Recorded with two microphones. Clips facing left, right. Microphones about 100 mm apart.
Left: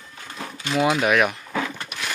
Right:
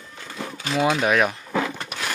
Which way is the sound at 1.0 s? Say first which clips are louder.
Even; 30° right (ahead or behind).